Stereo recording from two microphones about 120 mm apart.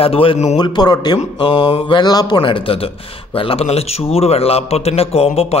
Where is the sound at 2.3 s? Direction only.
45° left (ahead or behind).